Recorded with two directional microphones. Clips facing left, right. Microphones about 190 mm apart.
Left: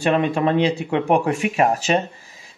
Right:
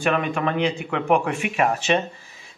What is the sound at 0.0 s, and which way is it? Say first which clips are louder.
A man's voice: left 4 dB; 30° left (ahead or behind).